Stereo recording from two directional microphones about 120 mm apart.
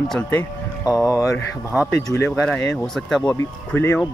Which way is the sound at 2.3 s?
10° left (ahead or behind).